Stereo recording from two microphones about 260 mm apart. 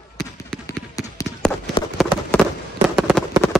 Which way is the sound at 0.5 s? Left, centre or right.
Centre.